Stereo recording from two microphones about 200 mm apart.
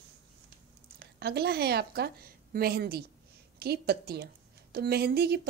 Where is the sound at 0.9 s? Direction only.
55° right (ahead or behind).